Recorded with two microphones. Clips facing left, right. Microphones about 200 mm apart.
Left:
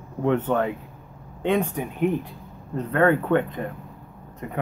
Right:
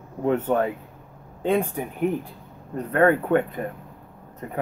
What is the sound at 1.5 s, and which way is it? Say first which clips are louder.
Speech: even; 10° right (ahead or behind).